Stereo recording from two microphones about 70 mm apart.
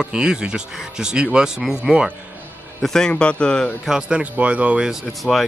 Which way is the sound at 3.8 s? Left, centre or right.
Centre.